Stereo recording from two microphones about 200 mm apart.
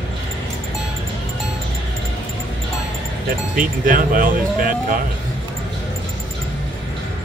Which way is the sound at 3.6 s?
45° right (ahead or behind).